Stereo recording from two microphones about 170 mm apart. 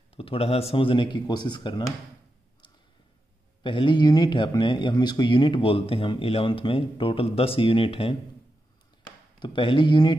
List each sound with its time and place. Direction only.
0.1 s speech: 35° left (ahead or behind)
3.6 s speech: 30° left (ahead or behind)
9.4 s speech: 30° left (ahead or behind)